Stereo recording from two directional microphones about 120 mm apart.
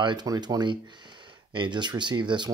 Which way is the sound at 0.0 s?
40° right (ahead or behind).